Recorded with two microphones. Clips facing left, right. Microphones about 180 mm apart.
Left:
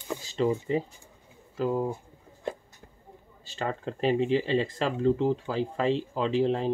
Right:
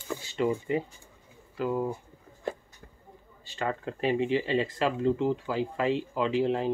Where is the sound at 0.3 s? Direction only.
35° left (ahead or behind).